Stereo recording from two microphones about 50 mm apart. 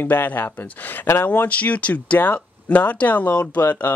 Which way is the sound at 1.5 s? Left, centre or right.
Left.